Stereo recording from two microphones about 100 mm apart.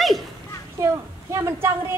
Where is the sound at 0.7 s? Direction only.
30° right (ahead or behind).